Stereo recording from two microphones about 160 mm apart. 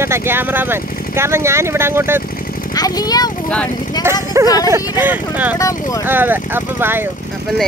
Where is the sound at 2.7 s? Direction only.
25° left (ahead or behind).